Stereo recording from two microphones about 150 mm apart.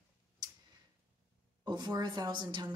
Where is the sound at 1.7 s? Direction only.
30° right (ahead or behind).